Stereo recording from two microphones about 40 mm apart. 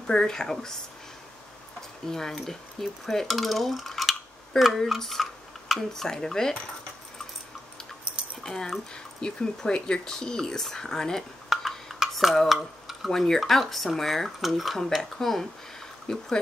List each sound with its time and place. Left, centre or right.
0.0 s speech: centre
1.8 s a sound: centre
2.3 s dishes: centre
4.7 s a sound: centre
5.8 s speech: centre
8.2 s keys jangling: right
9.2 s speech: left
11.4 s dishes: centre
11.9 s stir: centre
13.1 s speech: centre
16.1 s speech: centre